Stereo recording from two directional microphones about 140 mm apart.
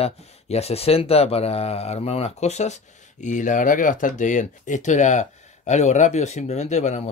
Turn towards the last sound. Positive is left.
turn(degrees=55)  # may be behind; listen again after turning